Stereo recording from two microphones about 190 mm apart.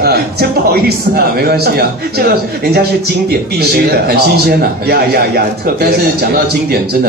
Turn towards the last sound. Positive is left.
turn(degrees=-55)  # may be behind; listen again after turning